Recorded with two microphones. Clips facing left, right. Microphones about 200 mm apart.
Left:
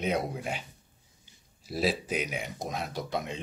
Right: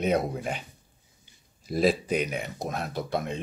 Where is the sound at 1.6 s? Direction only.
5° left (ahead or behind).